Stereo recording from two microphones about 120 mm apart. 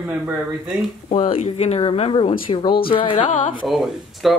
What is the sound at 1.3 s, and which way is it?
Speech, 60° left (ahead or behind).